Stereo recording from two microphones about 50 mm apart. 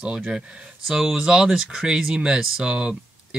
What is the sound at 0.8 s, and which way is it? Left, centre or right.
Speech, centre.